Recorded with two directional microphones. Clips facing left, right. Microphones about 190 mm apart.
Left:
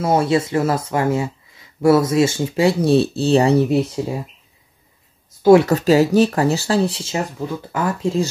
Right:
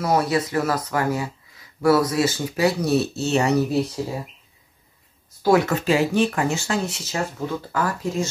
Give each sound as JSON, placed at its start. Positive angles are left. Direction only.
{"t": 0.0, "sound": "speech", "side_deg": 25}
{"t": 5.4, "sound": "speech", "side_deg": 25}
{"t": 5.7, "sound": "speech", "side_deg": 40}